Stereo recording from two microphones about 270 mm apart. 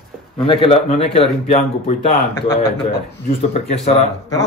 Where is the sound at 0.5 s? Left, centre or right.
Left.